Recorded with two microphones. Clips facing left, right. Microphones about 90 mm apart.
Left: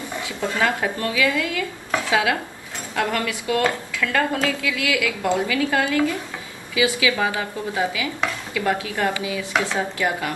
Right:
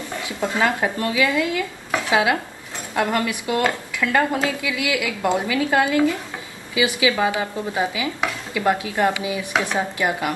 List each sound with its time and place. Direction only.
0.5 s speech: 25° right (ahead or behind)